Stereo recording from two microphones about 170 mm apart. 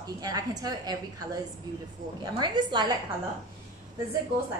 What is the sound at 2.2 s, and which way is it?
Speech, 25° right (ahead or behind).